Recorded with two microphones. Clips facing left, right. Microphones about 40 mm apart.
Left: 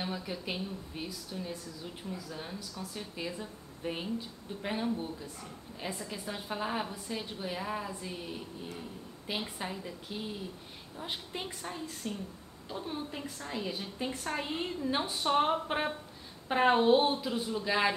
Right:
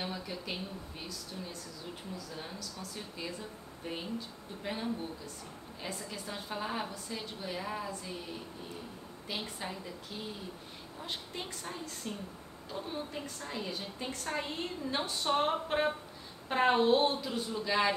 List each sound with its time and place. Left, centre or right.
0.0 s a woman's voice: centre
2.8 s a woman's voice: centre
9.4 s a woman's voice: centre